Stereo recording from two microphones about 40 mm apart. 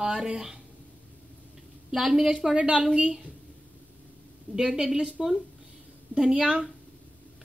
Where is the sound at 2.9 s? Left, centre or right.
Centre.